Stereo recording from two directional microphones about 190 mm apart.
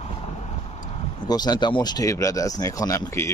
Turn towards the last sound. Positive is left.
turn(degrees=15)  # may be behind; listen again after turning